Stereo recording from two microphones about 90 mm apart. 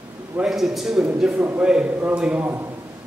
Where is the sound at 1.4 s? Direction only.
20° right (ahead or behind).